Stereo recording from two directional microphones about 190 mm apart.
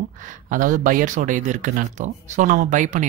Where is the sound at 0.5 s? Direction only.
45° right (ahead or behind).